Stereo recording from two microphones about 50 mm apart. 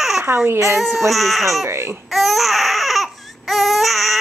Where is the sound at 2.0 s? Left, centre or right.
Centre.